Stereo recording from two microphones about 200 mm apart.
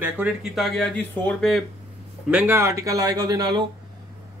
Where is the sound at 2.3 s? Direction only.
10° right (ahead or behind).